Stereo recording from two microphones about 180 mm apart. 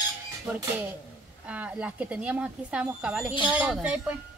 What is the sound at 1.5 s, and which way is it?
A woman's voice, 5° right (ahead or behind).